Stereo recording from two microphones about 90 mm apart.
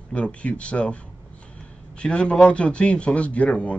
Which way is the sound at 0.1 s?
15° left (ahead or behind).